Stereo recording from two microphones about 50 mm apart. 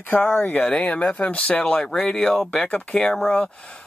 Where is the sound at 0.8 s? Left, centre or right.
Left.